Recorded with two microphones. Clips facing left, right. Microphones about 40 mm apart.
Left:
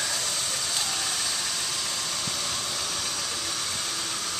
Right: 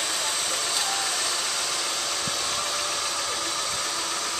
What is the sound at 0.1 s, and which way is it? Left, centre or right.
Vehicle, right.